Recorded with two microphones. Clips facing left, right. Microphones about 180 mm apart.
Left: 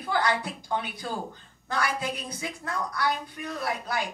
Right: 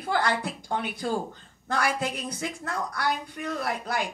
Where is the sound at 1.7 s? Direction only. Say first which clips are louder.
Right 2 dB; 55° right (ahead or behind).